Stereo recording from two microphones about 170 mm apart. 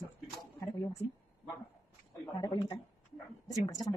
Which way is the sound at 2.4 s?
20° left (ahead or behind).